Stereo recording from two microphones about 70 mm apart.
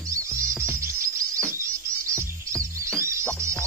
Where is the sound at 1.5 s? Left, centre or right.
Right.